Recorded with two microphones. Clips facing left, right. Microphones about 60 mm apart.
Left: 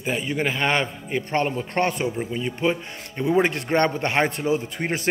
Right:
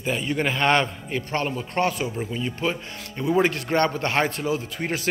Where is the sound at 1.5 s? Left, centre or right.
Left.